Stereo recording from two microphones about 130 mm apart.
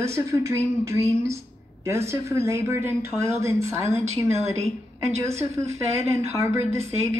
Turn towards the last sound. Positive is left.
turn(degrees=-20)  # may be behind; listen again after turning